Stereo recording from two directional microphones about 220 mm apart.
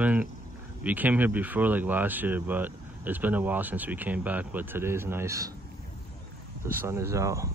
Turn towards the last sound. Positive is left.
turn(degrees=-15)  # may be behind; listen again after turning